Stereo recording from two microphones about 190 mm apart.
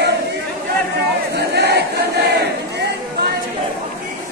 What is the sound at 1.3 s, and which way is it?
Crowd, 60° right (ahead or behind).